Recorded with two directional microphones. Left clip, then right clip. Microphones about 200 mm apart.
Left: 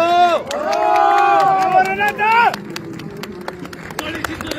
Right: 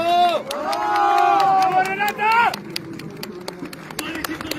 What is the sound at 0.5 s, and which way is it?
Crowd, 60° right (ahead or behind).